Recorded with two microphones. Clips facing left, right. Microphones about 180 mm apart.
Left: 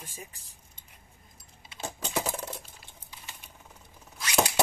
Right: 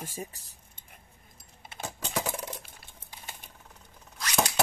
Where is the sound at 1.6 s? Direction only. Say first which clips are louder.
Right 6 dB; 55° right (ahead or behind).